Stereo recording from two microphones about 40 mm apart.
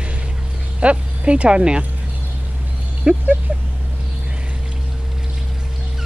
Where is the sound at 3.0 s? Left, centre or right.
Right.